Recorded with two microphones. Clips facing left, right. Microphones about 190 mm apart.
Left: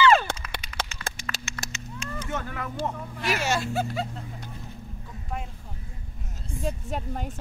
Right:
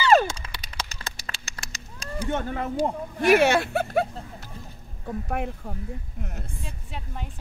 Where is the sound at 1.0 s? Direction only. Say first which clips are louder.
Left 3 dB; 30° right (ahead or behind).